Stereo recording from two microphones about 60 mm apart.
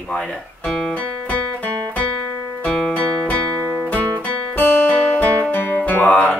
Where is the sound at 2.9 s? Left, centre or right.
Left.